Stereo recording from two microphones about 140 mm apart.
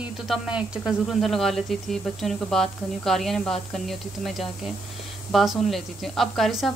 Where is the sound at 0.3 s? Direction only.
5° right (ahead or behind).